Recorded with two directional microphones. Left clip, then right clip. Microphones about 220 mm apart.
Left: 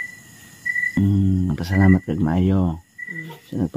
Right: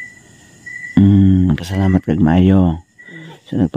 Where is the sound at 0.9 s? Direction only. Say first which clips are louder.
Right 9 dB; 25° right (ahead or behind).